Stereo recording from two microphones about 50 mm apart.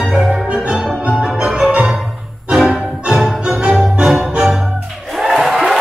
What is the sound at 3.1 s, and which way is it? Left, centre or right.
Music, centre.